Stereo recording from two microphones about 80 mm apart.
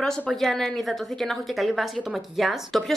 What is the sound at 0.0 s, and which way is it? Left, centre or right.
Speech, centre.